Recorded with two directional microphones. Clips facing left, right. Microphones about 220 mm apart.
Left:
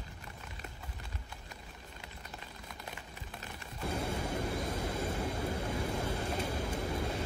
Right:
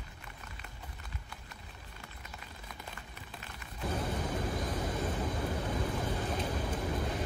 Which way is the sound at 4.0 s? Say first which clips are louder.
Even; 10° left (ahead or behind).